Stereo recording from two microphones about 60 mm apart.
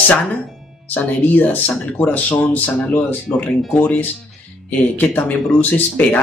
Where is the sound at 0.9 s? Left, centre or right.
Left.